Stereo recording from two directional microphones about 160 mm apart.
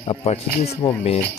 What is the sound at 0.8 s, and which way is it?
Music, 20° left (ahead or behind).